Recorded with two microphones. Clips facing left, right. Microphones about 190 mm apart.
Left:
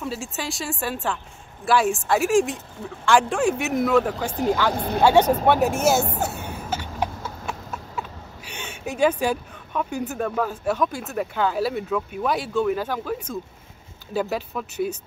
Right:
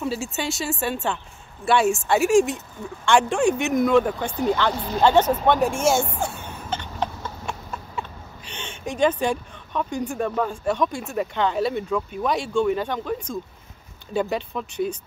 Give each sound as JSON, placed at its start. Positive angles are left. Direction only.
{"t": 0.0, "sound": "speech", "side_deg": 0}
{"t": 4.3, "sound": "speech", "side_deg": 45}
{"t": 4.7, "sound": "speech", "side_deg": 55}
{"t": 5.4, "sound": "speech", "side_deg": 5}
{"t": 6.1, "sound": "a sound", "side_deg": 5}
{"t": 8.5, "sound": "speech", "side_deg": 10}